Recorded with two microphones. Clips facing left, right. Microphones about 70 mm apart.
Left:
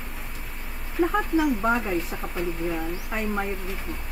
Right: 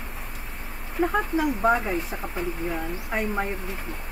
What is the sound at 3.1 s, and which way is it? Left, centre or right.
Speech, right.